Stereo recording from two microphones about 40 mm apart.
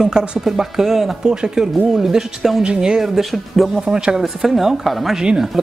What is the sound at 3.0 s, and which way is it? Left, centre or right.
Speech, centre.